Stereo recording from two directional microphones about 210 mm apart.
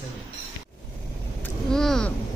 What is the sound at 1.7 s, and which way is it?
Speech, 5° left (ahead or behind).